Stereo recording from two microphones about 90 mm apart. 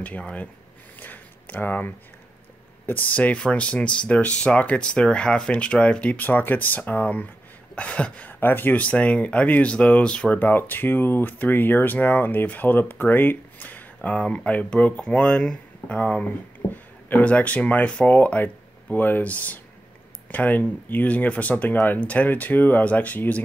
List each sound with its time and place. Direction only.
0.0 s speech: 15° left (ahead or behind)
0.9 s a sound: 20° left (ahead or behind)
2.9 s speech: 15° left (ahead or behind)